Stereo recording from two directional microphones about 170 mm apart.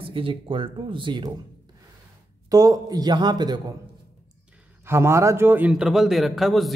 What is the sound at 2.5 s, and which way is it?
A man's voice, 20° right (ahead or behind).